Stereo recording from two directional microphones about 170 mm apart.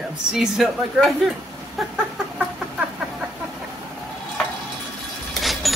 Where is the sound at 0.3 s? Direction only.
Centre (ahead or behind).